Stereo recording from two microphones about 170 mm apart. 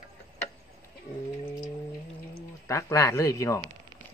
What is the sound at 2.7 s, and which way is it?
Speech, 15° left (ahead or behind).